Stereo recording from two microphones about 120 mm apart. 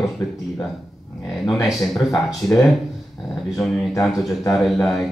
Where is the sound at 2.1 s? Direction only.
30° left (ahead or behind).